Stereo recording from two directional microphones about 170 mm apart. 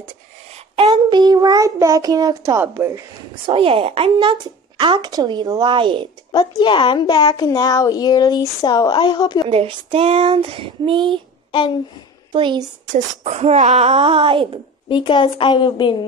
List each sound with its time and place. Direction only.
0.7 s a woman's voice: 30° right (ahead or behind); by 3.0 s 15° right (ahead or behind)
3.4 s a woman's voice: 30° right (ahead or behind)
6.6 s speech: 30° left (ahead or behind)
9.5 s speech: 30° right (ahead or behind)
11.5 s a sound: 30° left (ahead or behind)
12.3 s a woman's voice: 30° right (ahead or behind)
12.9 s speech: 40° right (ahead or behind)
14.9 s speech: 30° left (ahead or behind)